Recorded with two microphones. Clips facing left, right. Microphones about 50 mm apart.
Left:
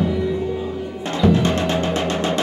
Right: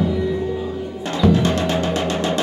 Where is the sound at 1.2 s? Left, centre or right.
Left.